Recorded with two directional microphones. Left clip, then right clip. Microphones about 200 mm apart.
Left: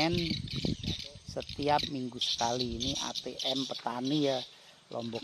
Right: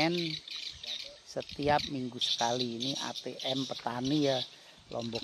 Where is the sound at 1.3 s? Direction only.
Centre (ahead or behind).